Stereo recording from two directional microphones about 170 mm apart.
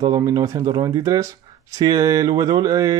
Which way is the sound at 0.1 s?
20° right (ahead or behind).